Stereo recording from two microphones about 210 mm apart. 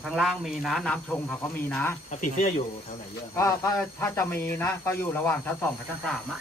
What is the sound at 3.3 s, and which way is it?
Speech, 15° left (ahead or behind).